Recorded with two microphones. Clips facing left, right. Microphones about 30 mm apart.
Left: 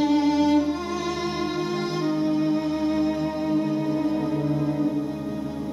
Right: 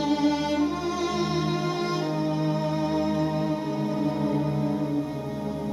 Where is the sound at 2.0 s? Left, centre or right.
Centre.